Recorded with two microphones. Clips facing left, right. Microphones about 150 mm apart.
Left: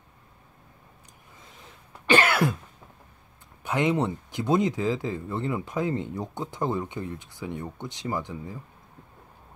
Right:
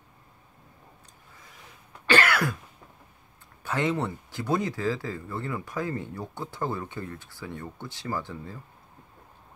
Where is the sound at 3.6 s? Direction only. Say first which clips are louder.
Left 3 dB; 20° left (ahead or behind).